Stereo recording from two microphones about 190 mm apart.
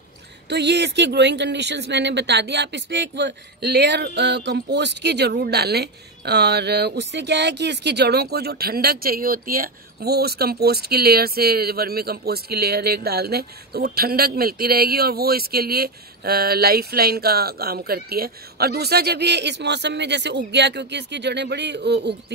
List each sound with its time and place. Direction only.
0.5 s speech: 65° right (ahead or behind)